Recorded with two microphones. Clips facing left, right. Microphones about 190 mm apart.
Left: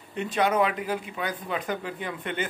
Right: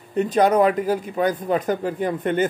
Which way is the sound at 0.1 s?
40° right (ahead or behind).